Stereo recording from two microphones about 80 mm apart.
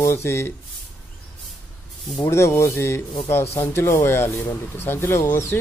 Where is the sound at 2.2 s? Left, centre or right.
Left.